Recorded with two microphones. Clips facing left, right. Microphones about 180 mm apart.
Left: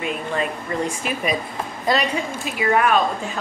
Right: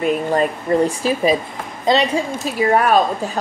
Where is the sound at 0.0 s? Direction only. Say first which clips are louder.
Right 7 dB; 45° right (ahead or behind).